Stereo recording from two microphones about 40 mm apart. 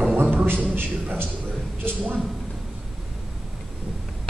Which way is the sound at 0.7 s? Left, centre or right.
Right.